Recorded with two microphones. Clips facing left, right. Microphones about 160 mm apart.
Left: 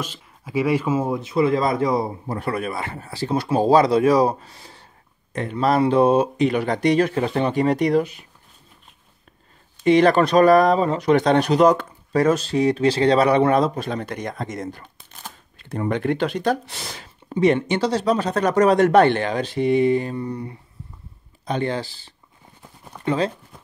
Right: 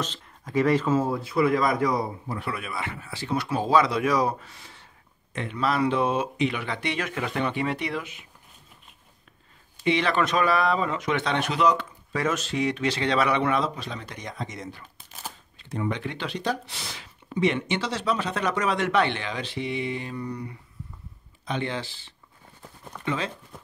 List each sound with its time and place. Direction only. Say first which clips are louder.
0.0 s speech: left 1 dB; 10° left (ahead or behind); by 2.0 s 25° left (ahead or behind)
2.2 s speech: left 7 dB; 40° left (ahead or behind)
9.8 s speech: left 9 dB; 45° left (ahead or behind)
20.2 s speech: left 5 dB; 30° left (ahead or behind)
21.5 s speech: left 6 dB; 40° left (ahead or behind)